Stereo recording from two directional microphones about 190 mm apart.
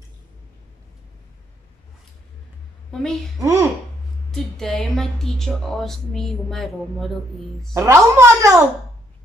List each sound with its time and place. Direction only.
2.9 s a woman's voice: 5° left (ahead or behind)
3.3 s speech: 15° right (ahead or behind)
4.3 s a woman's voice: centre (ahead or behind)
7.7 s speech: 15° right (ahead or behind)